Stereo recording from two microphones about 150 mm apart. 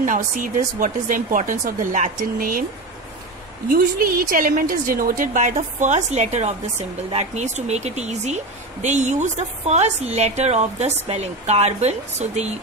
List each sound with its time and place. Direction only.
0.0 s a woman's voice: 60° right (ahead or behind)
3.6 s a woman's voice: 75° right (ahead or behind); by 12.5 s 45° right (ahead or behind)